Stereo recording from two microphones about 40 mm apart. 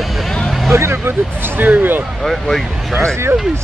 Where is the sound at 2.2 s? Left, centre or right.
Centre.